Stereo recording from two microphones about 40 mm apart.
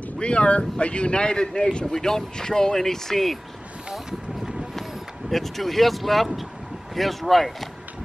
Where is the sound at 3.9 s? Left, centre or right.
Centre.